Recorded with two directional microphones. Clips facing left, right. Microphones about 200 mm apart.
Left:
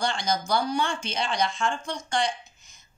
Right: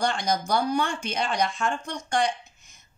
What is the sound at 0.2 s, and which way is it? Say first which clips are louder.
Speech: right 1 dB; 60° right (ahead or behind).